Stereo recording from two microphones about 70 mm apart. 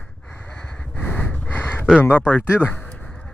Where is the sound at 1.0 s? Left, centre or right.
Left.